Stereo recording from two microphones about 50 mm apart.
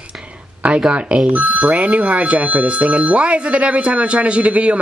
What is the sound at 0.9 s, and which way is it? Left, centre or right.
Speech, right.